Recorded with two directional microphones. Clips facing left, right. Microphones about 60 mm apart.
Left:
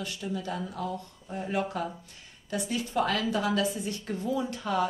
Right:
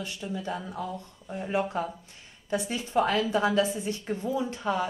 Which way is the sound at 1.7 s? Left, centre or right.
Right.